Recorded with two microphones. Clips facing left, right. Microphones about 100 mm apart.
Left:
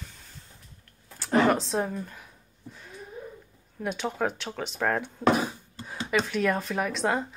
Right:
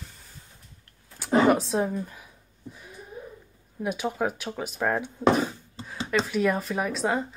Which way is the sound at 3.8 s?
5° right (ahead or behind).